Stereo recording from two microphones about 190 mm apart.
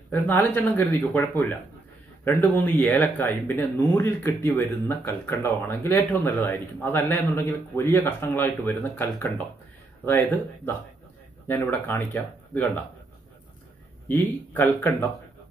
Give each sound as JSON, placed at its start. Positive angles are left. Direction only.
{"t": 0.1, "sound": "speech", "side_deg": 10}
{"t": 14.0, "sound": "speech", "side_deg": 10}